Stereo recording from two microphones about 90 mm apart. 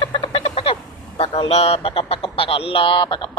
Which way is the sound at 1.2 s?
90° left.